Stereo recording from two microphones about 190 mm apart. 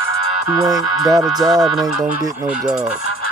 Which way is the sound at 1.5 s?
Centre (ahead or behind).